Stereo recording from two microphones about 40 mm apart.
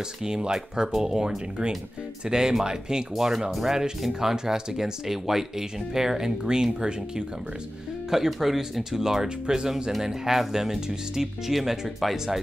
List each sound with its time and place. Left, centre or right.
0.2 s speech: centre
8.1 s speech: centre